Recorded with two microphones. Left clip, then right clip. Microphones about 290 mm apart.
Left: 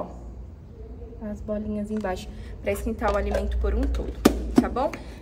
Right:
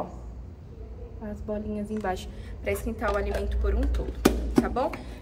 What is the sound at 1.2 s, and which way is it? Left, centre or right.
A woman's voice, centre.